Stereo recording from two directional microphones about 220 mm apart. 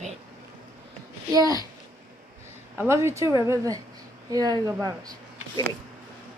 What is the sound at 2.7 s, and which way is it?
A woman's voice, 10° right (ahead or behind).